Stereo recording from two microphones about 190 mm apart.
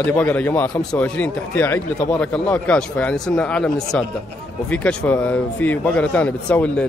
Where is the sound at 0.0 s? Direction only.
10° left (ahead or behind).